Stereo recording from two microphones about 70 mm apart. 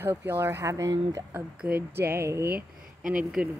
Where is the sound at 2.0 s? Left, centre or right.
Right.